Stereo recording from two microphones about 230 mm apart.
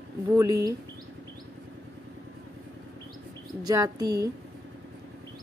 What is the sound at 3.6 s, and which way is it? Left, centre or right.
Speech, centre.